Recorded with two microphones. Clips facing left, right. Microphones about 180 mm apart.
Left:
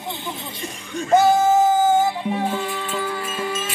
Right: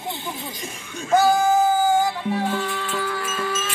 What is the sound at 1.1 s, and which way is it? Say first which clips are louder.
Music: left 2 dB; 25° left (ahead or behind).